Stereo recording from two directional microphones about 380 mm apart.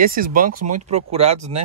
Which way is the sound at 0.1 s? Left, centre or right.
Right.